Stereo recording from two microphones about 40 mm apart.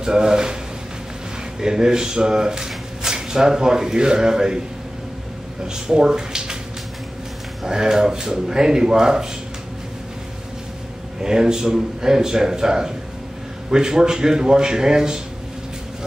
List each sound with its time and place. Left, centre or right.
0.0 s speech: centre
1.6 s speech: centre
5.7 s speech: centre
7.6 s speech: centre
11.2 s speech: centre